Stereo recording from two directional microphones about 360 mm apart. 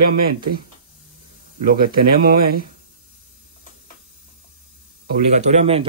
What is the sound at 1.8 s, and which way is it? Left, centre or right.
Speech, right.